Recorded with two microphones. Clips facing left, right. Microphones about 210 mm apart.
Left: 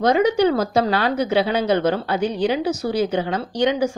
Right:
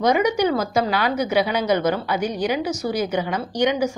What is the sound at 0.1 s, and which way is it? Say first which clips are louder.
A woman's voice: left 2 dB; 30° left (ahead or behind).